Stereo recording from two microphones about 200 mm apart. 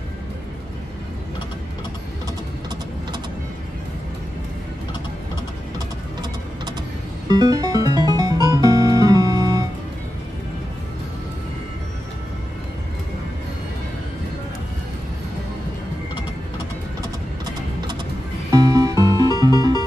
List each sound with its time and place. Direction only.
7.2 s music: 20° right (ahead or behind)
18.5 s music: 15° right (ahead or behind)